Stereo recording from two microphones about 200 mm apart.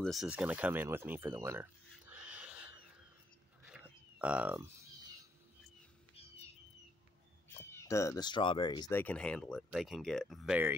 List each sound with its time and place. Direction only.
0.0 s speech: centre (ahead or behind)
3.6 s a sound: 5° right (ahead or behind)
7.4 s speech: 15° left (ahead or behind)
8.9 s speech: 5° left (ahead or behind)